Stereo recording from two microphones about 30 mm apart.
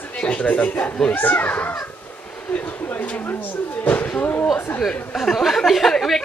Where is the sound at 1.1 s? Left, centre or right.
Left.